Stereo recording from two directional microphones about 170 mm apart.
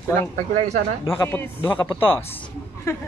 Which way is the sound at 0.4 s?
45° right (ahead or behind).